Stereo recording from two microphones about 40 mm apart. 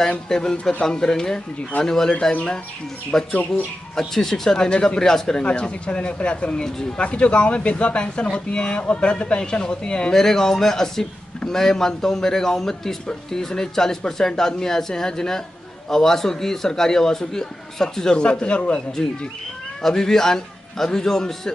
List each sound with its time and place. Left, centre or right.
0.3 s speech: centre
4.6 s speech: left
5.4 s speech: left
10.1 s speech: centre